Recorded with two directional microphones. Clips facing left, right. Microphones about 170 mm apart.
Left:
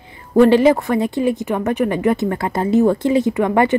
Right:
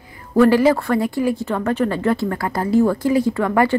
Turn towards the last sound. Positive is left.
turn(degrees=20)  # may be behind; listen again after turning